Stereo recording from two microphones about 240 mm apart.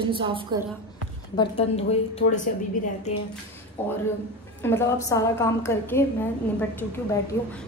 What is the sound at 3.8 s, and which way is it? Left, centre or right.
A woman's voice, centre.